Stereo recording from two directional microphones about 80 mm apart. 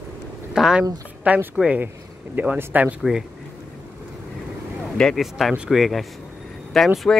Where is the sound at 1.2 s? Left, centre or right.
Centre.